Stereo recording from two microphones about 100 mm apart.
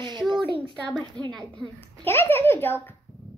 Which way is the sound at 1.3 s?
5° left (ahead or behind).